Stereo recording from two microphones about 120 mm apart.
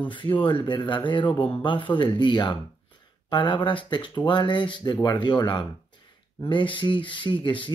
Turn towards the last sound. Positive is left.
turn(degrees=40)  # may be behind; listen again after turning